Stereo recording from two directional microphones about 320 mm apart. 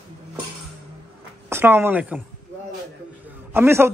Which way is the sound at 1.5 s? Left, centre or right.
Centre.